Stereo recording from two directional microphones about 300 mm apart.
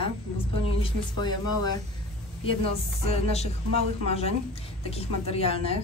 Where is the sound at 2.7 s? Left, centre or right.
Left.